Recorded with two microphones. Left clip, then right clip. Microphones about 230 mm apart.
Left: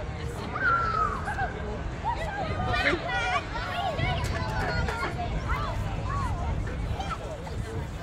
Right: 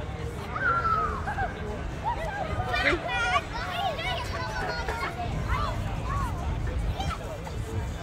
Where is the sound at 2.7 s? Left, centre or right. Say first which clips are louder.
Right 1 dB; right.